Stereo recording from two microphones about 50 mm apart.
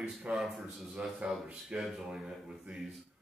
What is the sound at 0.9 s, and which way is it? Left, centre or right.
A man's voice, right.